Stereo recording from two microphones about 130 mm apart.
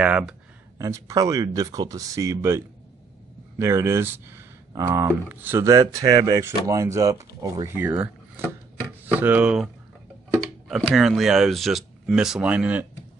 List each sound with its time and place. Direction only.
0.0 s speech: 5° right (ahead or behind)
0.7 s speech: 25° right (ahead or behind)